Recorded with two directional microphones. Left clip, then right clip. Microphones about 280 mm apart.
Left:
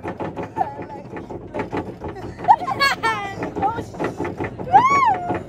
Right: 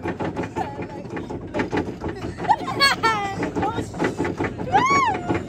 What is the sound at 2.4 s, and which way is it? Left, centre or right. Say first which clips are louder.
Music: left 5 dB; left.